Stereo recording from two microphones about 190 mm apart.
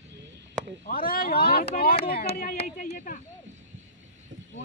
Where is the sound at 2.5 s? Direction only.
55° left (ahead or behind).